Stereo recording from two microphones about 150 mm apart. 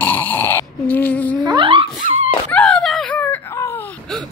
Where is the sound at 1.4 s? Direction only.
30° right (ahead or behind).